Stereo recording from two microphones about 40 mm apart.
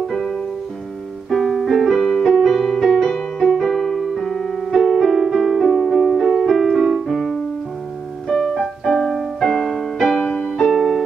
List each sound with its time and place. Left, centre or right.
0.1 s music: centre
1.3 s piano: centre
2.4 s music: centre
3.0 s music: centre
3.6 s keyboard: centre
4.2 s piano: centre
8.3 s music: centre
10.2 s music: left